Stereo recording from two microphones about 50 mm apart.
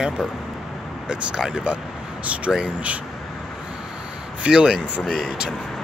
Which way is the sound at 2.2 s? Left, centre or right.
Right.